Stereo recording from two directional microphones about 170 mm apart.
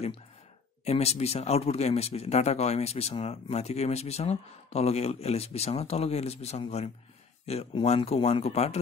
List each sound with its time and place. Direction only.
0.8 s speech: 40° left (ahead or behind)